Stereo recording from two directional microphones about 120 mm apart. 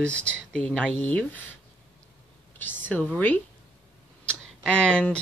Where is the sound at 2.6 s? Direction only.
15° left (ahead or behind).